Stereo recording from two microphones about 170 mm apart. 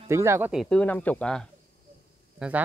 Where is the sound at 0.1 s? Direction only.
15° right (ahead or behind).